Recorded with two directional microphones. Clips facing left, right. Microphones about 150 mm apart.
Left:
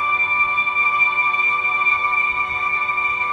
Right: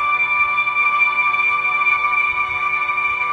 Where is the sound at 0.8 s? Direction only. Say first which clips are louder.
Right 1 dB; 30° left (ahead or behind).